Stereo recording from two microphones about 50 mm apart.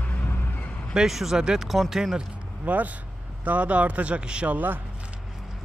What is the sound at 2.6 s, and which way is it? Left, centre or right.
Speech, right.